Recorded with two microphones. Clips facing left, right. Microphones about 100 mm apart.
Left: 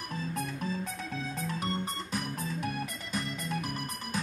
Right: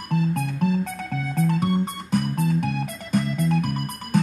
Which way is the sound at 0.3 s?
60° right (ahead or behind).